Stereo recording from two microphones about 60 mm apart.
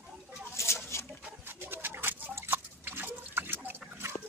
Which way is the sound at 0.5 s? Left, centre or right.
Left.